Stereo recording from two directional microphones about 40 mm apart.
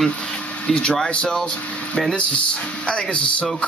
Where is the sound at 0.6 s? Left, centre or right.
Left.